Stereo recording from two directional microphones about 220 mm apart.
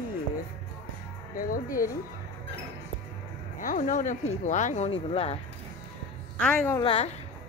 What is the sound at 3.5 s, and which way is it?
Speech, 35° left (ahead or behind).